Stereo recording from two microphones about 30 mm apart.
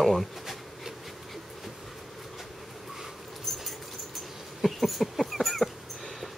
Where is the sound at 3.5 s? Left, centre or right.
Centre.